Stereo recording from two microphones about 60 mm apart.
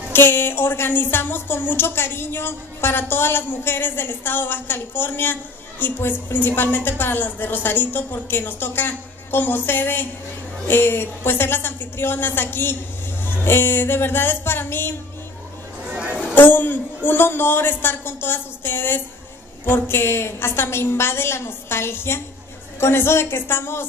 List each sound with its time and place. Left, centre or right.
0.1 s a woman's voice: left
15.9 s a sound: centre
16.3 s a woman's voice: left